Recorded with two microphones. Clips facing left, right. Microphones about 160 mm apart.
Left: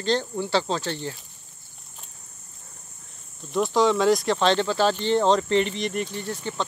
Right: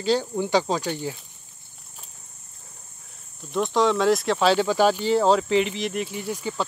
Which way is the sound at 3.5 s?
Centre (ahead or behind).